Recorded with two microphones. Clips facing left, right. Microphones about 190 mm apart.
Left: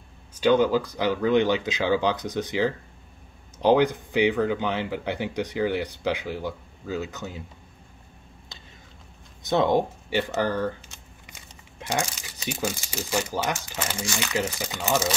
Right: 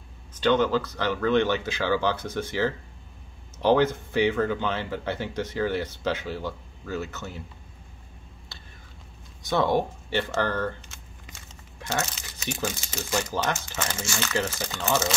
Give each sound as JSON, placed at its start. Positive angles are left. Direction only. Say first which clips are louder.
{"t": 0.3, "sound": "speech", "louder": "left 2 dB", "side_deg": 10}
{"t": 9.4, "sound": "speech", "louder": "left 2 dB", "side_deg": 20}